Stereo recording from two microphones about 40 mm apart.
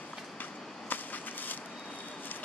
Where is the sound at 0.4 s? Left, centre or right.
Left.